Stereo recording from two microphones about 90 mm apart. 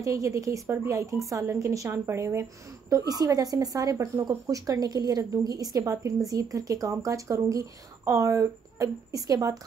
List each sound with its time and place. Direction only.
0.0 s speech: 35° right (ahead or behind)
2.9 s speech: 45° right (ahead or behind)